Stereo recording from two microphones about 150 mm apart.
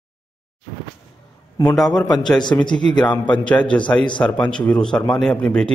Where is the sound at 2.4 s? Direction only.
30° left (ahead or behind).